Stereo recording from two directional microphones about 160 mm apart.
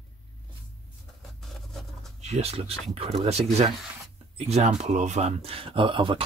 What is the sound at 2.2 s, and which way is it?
Speech, 40° right (ahead or behind).